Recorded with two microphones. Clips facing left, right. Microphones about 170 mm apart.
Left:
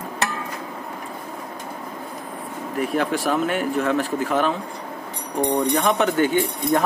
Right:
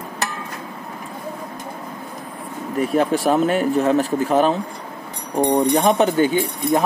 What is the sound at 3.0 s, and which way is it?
Speech, 30° right (ahead or behind).